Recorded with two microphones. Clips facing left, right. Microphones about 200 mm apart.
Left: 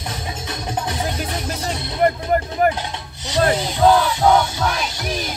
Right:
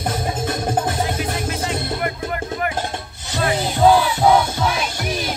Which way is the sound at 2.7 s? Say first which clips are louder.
Right 2 dB; 50° right (ahead or behind).